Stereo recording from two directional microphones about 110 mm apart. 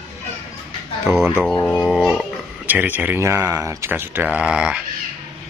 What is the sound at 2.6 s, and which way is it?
A man's voice, 15° right (ahead or behind).